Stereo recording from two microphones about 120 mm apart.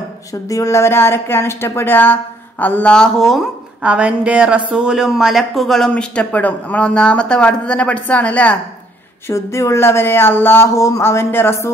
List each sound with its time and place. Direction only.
0.3 s a woman's voice: 30° left (ahead or behind); by 8.5 s 10° left (ahead or behind)
9.3 s speech: 25° left (ahead or behind)